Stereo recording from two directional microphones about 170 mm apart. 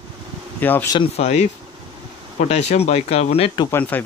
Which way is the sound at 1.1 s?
40° left (ahead or behind).